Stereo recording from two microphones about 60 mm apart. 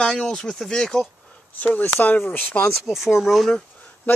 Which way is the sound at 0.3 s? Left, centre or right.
Centre.